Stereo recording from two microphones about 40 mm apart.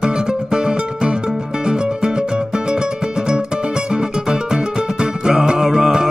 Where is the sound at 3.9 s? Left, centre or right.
Centre.